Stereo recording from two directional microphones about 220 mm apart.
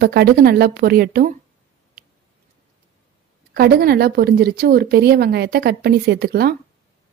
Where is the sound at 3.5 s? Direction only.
45° right (ahead or behind).